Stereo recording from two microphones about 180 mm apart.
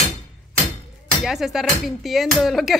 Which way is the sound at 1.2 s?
Centre (ahead or behind).